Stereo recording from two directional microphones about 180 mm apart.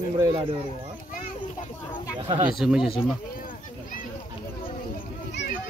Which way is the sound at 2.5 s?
Centre (ahead or behind).